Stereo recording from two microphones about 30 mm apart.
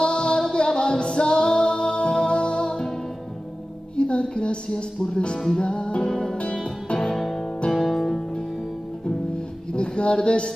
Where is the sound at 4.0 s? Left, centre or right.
Left.